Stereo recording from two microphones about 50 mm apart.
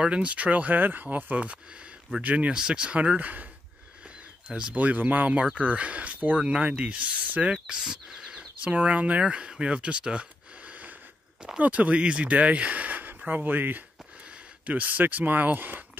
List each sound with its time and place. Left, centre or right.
0.0 s speech: right
1.0 s speech: right
2.5 s speech: centre; by 3.4 s right
4.5 s speech: centre
4.7 s speech: right
7.6 s speech: centre
8.7 s speech: right
10.7 s a sound: right
11.6 s speech: right